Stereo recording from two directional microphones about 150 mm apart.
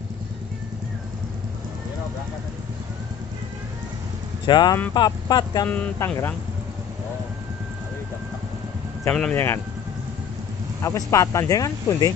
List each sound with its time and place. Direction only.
4.5 s speech: 30° left (ahead or behind)
5.7 s speech: 10° left (ahead or behind)
9.1 s speech: 10° left (ahead or behind)
10.8 s speech: 20° left (ahead or behind)